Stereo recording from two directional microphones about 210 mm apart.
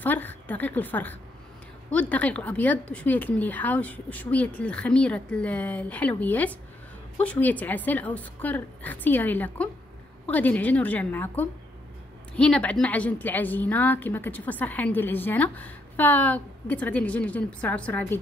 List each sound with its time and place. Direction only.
0.0 s a woman's voice: 10° left (ahead or behind)